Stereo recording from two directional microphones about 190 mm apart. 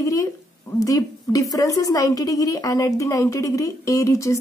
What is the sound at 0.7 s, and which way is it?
A woman's voice, 15° left (ahead or behind).